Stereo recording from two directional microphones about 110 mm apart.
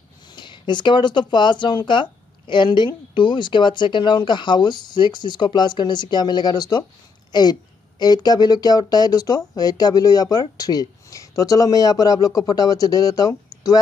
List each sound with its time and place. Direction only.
0.3 s speech: 45° left (ahead or behind)